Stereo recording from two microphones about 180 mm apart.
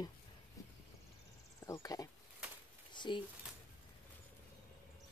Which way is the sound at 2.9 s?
25° left (ahead or behind).